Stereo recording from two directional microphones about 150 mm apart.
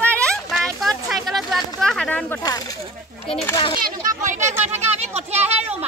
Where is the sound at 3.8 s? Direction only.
60° right (ahead or behind).